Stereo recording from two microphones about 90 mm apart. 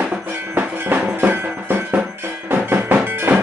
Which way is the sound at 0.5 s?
25° right (ahead or behind).